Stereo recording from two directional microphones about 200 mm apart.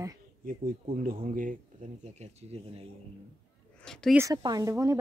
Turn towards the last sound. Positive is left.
turn(degrees=-15)  # may be behind; listen again after turning